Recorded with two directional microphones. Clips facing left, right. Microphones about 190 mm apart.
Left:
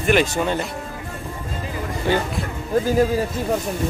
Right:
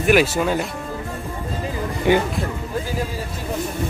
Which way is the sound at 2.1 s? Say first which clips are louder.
Right 4 dB; 15° right (ahead or behind).